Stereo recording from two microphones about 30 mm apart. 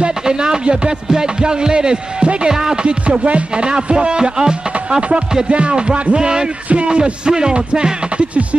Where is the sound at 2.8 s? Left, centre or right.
Right.